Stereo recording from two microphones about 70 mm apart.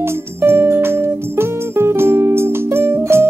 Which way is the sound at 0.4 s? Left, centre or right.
Right.